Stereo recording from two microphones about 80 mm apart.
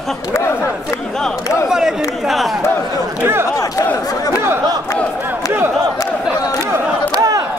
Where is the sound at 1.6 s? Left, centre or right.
Centre.